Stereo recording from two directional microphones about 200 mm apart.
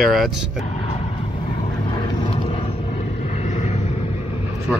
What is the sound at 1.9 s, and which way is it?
Vehicle, 20° left (ahead or behind).